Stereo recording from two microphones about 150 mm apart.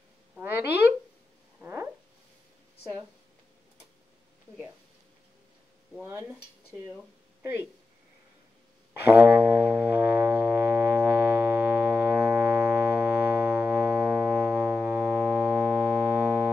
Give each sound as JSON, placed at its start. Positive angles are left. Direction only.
{"t": 1.6, "sound": "a sound", "side_deg": -15}
{"t": 6.0, "sound": "speech", "side_deg": -15}
{"t": 9.0, "sound": "music", "side_deg": -10}